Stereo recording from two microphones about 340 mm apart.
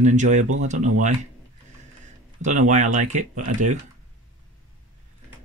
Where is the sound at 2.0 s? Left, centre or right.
Right.